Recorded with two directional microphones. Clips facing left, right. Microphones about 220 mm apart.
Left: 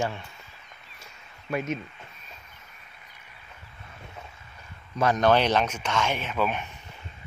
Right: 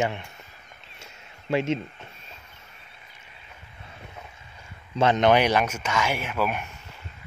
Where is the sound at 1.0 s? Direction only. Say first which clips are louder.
Right 4 dB; 25° right (ahead or behind).